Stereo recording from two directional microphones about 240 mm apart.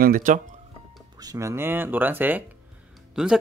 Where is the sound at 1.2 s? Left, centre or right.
Centre.